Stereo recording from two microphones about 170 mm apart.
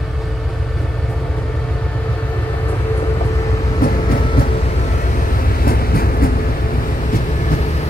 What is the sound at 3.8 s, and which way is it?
Train, 55° left (ahead or behind).